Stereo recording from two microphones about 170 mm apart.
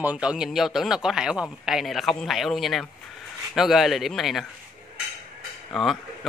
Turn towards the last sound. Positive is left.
turn(degrees=0)  # may be behind; listen again after turning